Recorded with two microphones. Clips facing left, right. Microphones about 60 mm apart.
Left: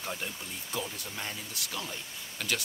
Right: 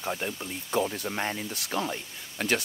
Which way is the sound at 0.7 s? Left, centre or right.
Right.